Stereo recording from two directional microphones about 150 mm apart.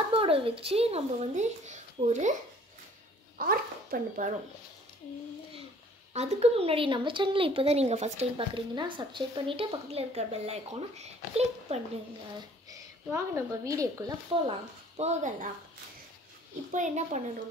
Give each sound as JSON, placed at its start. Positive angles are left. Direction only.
{"t": 0.2, "sound": "speech", "side_deg": -40}
{"t": 3.3, "sound": "speech", "side_deg": -75}
{"t": 6.1, "sound": "speech", "side_deg": -45}
{"t": 12.6, "sound": "speech", "side_deg": -20}
{"t": 15.0, "sound": "speech", "side_deg": -50}
{"t": 16.7, "sound": "speech", "side_deg": -55}